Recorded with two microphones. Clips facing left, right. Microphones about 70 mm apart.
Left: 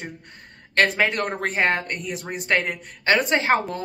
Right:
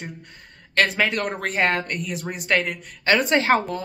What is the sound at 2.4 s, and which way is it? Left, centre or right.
Speech, left.